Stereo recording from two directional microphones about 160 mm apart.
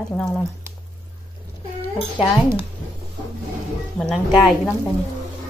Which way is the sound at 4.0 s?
Centre (ahead or behind).